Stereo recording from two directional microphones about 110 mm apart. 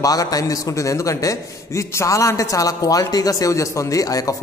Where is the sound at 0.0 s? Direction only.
35° left (ahead or behind).